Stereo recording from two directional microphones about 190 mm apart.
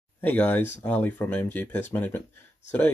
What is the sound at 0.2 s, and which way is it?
Speech, 10° left (ahead or behind).